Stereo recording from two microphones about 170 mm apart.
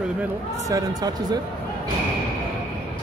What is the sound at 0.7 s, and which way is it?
Speech, 25° right (ahead or behind).